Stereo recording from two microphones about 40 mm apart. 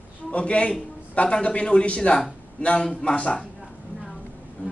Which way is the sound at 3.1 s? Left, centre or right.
Left.